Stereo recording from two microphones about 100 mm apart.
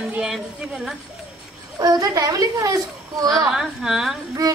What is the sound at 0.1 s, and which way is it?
Speech, 10° right (ahead or behind).